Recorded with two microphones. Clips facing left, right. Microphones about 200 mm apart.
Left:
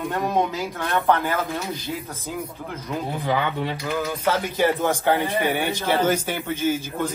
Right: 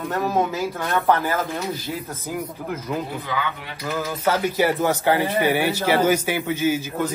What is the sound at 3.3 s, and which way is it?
Speech, 30° left (ahead or behind).